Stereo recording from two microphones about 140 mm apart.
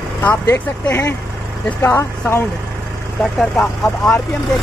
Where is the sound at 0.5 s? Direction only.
10° left (ahead or behind).